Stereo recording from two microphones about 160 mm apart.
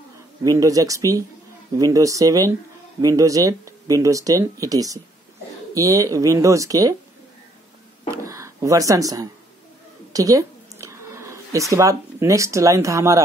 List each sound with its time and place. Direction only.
0.4 s speech: 20° right (ahead or behind)
8.1 s speech: 20° right (ahead or behind)